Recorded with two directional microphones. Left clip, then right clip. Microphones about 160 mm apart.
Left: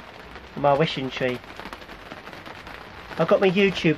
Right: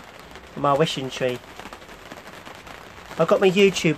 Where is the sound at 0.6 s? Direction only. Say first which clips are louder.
Even; 15° right (ahead or behind).